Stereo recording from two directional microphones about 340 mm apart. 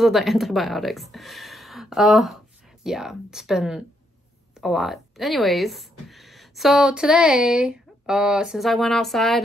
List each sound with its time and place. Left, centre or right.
0.0 s speech: centre